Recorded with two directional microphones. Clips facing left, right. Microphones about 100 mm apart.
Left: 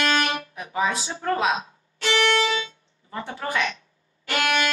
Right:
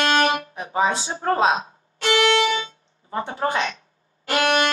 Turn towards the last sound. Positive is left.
turn(degrees=-40)  # may be behind; listen again after turning